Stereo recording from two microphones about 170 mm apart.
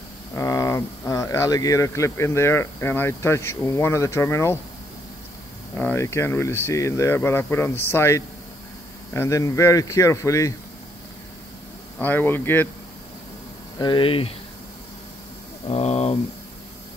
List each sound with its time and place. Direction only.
0.3 s speech: 20° left (ahead or behind)
5.8 s speech: 15° left (ahead or behind)
12.0 s speech: 10° left (ahead or behind)
13.7 s speech: 30° left (ahead or behind)
15.7 s speech: 40° left (ahead or behind)